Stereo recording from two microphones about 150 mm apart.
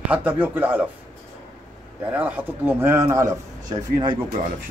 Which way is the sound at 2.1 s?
10° right (ahead or behind).